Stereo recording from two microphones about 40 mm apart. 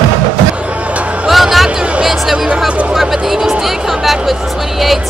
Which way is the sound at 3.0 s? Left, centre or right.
Centre.